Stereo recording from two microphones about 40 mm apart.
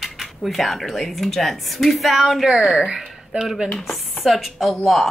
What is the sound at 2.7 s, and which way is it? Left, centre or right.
Speech, right.